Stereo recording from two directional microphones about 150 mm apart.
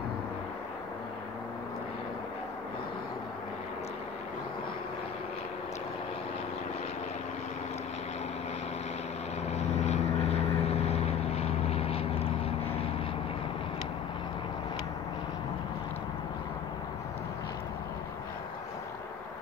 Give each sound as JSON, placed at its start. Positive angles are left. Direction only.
{"t": 9.5, "sound": "vehicle", "side_deg": 45}